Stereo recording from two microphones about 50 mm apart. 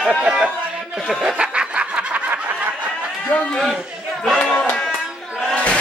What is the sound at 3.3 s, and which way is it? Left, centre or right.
Speech, left.